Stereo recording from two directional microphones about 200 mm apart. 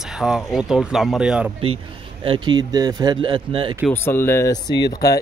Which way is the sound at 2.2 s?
25° right (ahead or behind).